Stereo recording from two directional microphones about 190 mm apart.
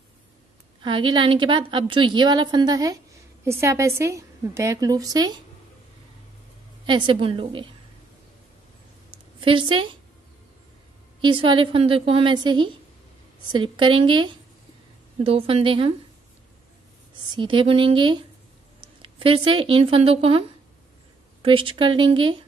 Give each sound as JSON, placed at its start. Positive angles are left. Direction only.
{"t": 0.8, "sound": "a woman's voice", "side_deg": -25}
{"t": 6.9, "sound": "a woman's voice", "side_deg": -25}
{"t": 9.1, "sound": "a sound", "side_deg": -25}
{"t": 11.1, "sound": "a woman's voice", "side_deg": -25}
{"t": 17.3, "sound": "a woman's voice", "side_deg": -25}